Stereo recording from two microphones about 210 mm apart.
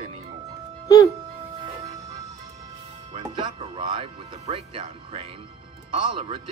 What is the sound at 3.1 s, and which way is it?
Music, 25° right (ahead or behind).